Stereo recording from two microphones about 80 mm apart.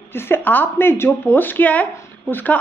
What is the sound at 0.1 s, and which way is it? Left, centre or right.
A woman's voice, left.